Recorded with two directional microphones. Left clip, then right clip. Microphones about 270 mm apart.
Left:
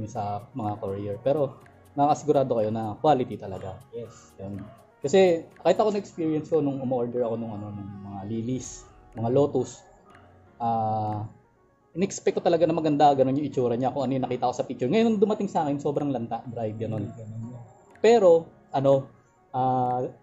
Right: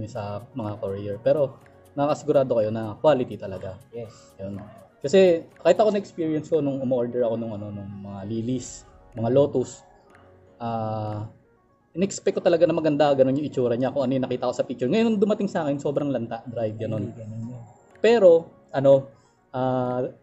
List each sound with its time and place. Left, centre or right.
0.0 s a man's voice: centre
18.0 s a man's voice: centre